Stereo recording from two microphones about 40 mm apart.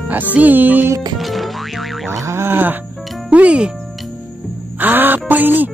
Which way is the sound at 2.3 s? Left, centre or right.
Right.